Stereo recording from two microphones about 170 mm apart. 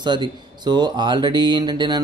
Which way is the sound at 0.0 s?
25° right (ahead or behind).